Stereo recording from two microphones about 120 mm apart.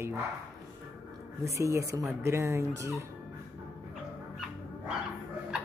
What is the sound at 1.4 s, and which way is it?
Speech, 25° right (ahead or behind).